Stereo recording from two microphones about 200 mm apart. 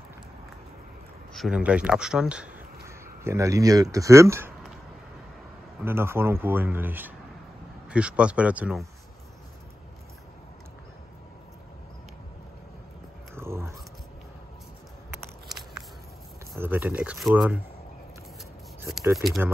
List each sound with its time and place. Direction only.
1.3 s speech: 5° right (ahead or behind)
3.3 s speech: 15° right (ahead or behind)
5.9 s speech: 10° right (ahead or behind)
13.3 s biting: 10° right (ahead or behind)
16.5 s speech: 10° right (ahead or behind)
19.1 s speech: centre (ahead or behind)